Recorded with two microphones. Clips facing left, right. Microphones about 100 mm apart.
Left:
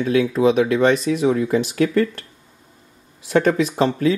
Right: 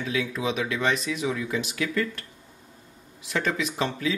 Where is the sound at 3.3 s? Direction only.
45° left (ahead or behind).